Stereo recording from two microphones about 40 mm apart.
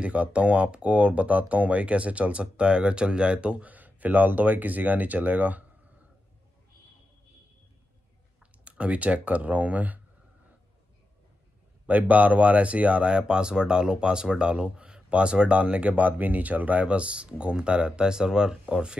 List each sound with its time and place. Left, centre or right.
0.0 s speech: right
3.7 s speech: right
8.6 s speech: right
11.8 s speech: right